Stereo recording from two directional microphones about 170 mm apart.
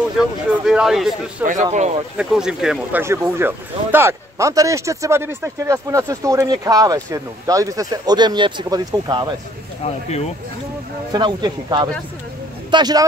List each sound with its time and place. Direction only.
0.5 s a man's voice: 5° right (ahead or behind)
1.4 s speech: 50° right (ahead or behind)
2.1 s a man's voice: 5° right (ahead or behind)
3.0 s speech: 15° right (ahead or behind)
9.8 s speech: 40° left (ahead or behind)
11.1 s speech: 25° right (ahead or behind)